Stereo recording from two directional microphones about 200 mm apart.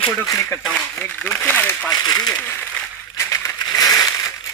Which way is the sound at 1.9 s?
20° left (ahead or behind).